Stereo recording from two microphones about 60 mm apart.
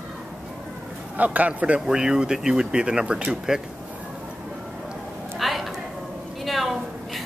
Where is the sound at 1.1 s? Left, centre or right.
Right.